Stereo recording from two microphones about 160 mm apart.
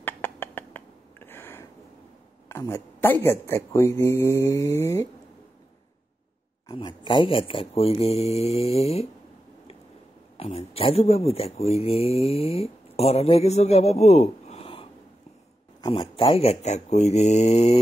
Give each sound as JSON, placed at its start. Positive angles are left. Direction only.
{"t": 0.0, "sound": "a sound", "side_deg": 10}
{"t": 2.4, "sound": "speech", "side_deg": 15}
{"t": 6.7, "sound": "speech", "side_deg": 30}
{"t": 10.3, "sound": "speech", "side_deg": 40}